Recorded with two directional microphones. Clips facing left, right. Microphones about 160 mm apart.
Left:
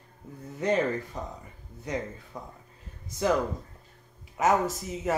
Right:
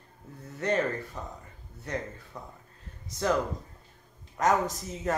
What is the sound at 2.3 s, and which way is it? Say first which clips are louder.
Speech: left 3 dB; 10° left (ahead or behind).